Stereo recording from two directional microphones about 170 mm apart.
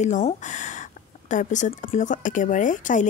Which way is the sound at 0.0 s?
45° left (ahead or behind).